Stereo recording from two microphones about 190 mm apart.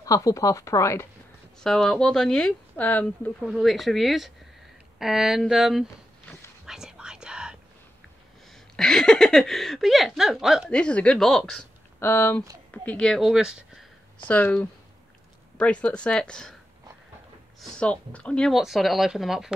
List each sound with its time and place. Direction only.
0.0 s speech: 15° left (ahead or behind)
1.6 s speech: 5° left (ahead or behind)
6.6 s whispering: 5° right (ahead or behind)
8.7 s speech: 5° left (ahead or behind)
14.2 s speech: 10° left (ahead or behind)
17.6 s speech: 5° left (ahead or behind)